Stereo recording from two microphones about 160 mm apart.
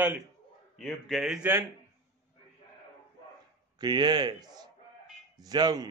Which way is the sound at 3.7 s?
25° right (ahead or behind).